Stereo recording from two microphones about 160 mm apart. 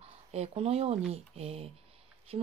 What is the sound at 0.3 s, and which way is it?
Speech, 40° right (ahead or behind).